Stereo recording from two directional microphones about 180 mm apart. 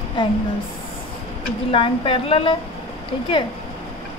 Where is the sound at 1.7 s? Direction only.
30° left (ahead or behind).